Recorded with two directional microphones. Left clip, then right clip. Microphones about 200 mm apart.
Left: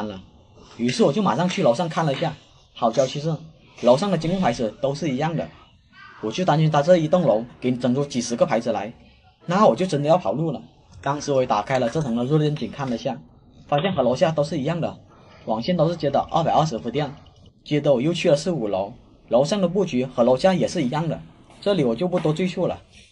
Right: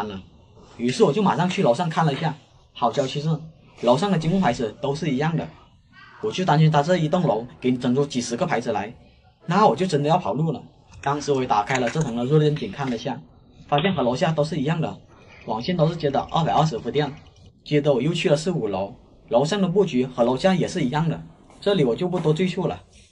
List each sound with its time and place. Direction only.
0.9 s speech: 50° left (ahead or behind)